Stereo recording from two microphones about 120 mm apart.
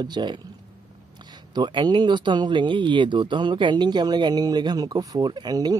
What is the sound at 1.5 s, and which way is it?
Speech, 40° right (ahead or behind).